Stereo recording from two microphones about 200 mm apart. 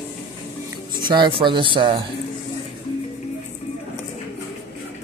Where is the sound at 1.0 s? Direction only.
20° right (ahead or behind).